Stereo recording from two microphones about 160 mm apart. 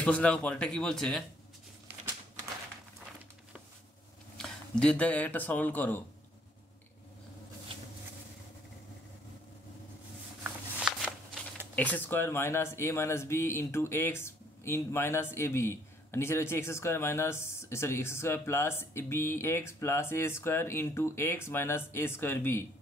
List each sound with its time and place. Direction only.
0.0 s speech: 5° left (ahead or behind)
4.4 s speech: 5° left (ahead or behind)
10.4 s shuffling cards: 5° right (ahead or behind)
11.7 s speech: 10° left (ahead or behind)